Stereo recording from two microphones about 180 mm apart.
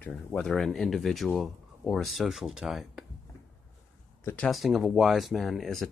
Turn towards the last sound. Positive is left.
turn(degrees=0)  # may be behind; listen again after turning